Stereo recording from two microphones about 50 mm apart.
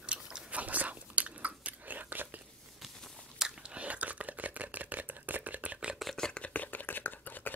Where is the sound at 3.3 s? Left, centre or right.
Centre.